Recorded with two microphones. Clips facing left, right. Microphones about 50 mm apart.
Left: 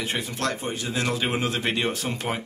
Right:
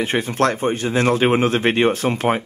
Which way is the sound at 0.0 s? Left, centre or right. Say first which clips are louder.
Right 9 dB; right.